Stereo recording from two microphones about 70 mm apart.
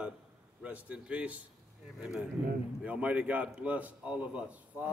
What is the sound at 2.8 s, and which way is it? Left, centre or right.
A man's voice, centre.